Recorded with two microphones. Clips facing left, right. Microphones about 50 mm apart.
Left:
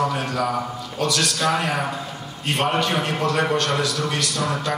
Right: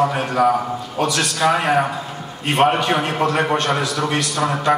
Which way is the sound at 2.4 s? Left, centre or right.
Right.